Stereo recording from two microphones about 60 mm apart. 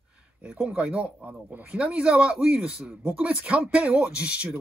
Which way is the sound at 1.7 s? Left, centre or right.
Centre.